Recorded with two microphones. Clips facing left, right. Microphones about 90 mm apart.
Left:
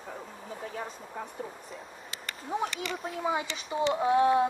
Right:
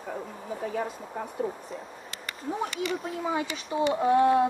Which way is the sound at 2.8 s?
Centre (ahead or behind).